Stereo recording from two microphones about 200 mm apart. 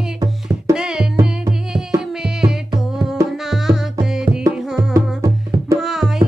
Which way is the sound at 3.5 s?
Centre (ahead or behind).